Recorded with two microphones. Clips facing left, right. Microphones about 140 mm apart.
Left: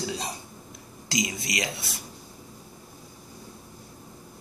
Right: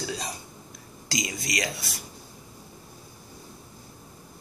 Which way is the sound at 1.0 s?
20° left (ahead or behind).